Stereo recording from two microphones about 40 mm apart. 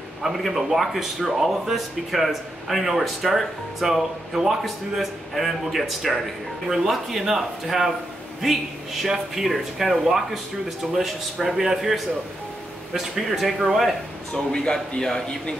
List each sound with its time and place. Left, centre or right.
0.2 s a man's voice: centre
11.6 s a man's voice: centre
12.9 s a man's voice: centre
14.3 s speech: centre